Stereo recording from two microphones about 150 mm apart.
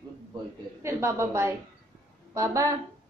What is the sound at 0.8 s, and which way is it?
A woman's voice, 20° right (ahead or behind).